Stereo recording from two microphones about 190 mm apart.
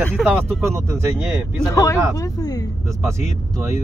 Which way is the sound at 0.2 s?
Centre (ahead or behind).